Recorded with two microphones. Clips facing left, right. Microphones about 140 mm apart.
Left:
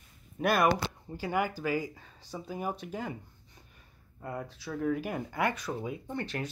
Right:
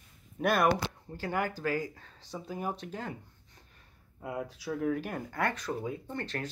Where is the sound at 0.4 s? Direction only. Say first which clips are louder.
Even; 5° left (ahead or behind).